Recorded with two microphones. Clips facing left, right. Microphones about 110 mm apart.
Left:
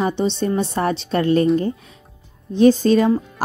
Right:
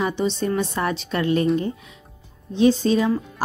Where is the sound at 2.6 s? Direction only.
50° left (ahead or behind).